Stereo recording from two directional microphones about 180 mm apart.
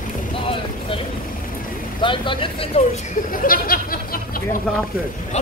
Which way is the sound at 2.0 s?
25° left (ahead or behind).